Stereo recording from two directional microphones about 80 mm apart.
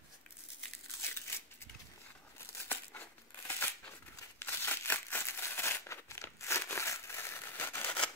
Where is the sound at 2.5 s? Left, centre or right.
Left.